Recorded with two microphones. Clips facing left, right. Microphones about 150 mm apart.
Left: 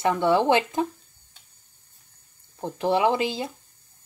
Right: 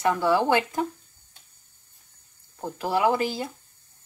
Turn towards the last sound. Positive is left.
turn(degrees=20)  # may be behind; listen again after turning